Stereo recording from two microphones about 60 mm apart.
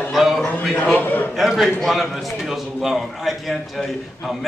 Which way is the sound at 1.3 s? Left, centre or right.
Centre.